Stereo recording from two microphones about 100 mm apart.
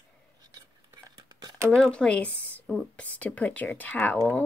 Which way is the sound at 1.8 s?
10° left (ahead or behind).